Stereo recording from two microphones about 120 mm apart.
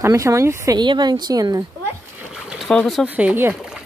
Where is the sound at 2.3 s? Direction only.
5° right (ahead or behind).